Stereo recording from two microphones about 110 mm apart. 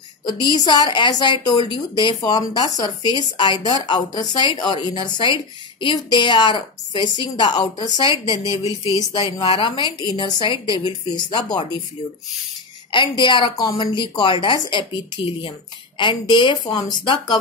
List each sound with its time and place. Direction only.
0.7 s a woman's voice: 40° left (ahead or behind)
8.3 s speech: 30° right (ahead or behind)
8.9 s speech: 35° left (ahead or behind)
9.4 s a woman's voice: 50° left (ahead or behind)
12.9 s a woman's voice: 45° left (ahead or behind)